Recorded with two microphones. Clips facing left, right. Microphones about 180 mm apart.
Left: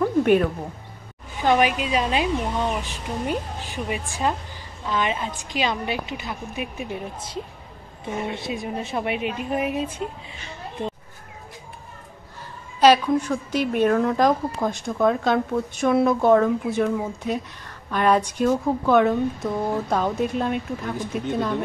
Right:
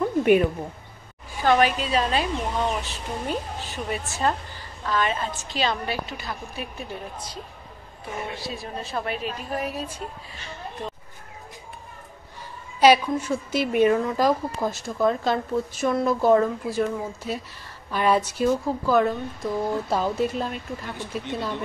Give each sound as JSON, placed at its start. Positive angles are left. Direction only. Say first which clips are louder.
{"t": 0.0, "sound": "a sound", "louder": "left 1 dB", "side_deg": -10}
{"t": 1.3, "sound": "a woman's voice", "louder": "even", "side_deg": 15}
{"t": 8.0, "sound": "a woman's voice", "louder": "left 4 dB", "side_deg": 20}
{"t": 12.8, "sound": "a woman's voice", "louder": "left 1 dB", "side_deg": -10}